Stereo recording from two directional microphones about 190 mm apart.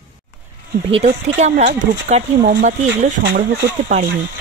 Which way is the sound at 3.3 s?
60° right (ahead or behind).